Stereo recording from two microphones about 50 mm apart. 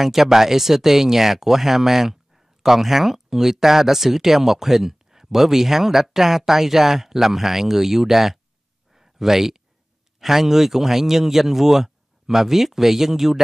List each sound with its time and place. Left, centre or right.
0.0 s speech: centre
8.9 s a sound: centre
10.2 s speech: centre